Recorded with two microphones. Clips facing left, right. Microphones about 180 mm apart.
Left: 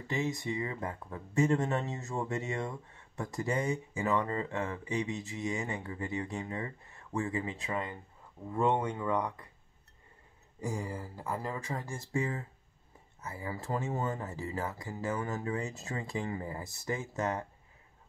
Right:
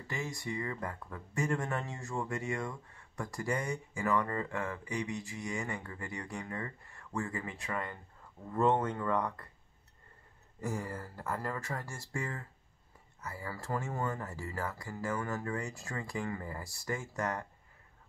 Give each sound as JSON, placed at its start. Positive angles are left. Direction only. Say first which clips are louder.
{"t": 0.1, "sound": "speech", "louder": "left 5 dB", "side_deg": 20}
{"t": 10.6, "sound": "speech", "louder": "left 1 dB", "side_deg": 15}